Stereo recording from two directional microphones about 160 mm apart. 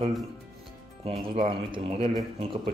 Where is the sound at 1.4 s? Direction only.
35° right (ahead or behind).